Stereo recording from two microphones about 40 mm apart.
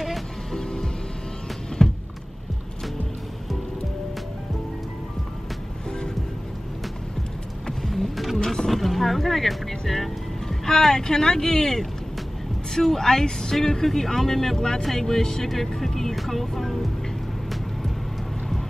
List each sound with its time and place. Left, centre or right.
0.0 s music: centre
1.8 s a sound: centre
5.9 s music: centre
7.6 s music: centre
10.6 s speech: centre